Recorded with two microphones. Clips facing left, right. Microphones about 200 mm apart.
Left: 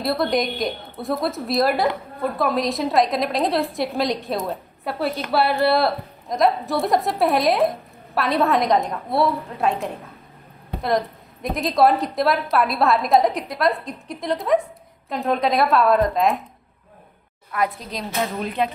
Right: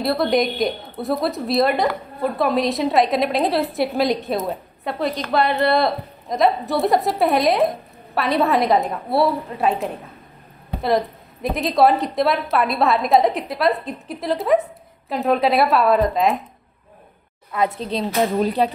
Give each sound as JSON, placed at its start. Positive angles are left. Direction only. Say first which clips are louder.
{"t": 0.0, "sound": "a woman's voice", "louder": "right 3 dB", "side_deg": 0}
{"t": 17.5, "sound": "speech", "louder": "right 3 dB", "side_deg": -25}